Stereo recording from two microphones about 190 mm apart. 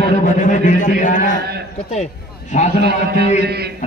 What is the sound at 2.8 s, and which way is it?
Speech, 60° right (ahead or behind).